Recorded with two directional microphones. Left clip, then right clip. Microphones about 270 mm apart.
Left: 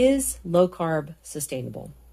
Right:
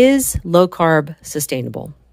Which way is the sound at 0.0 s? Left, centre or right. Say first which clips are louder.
Right 8 dB; right.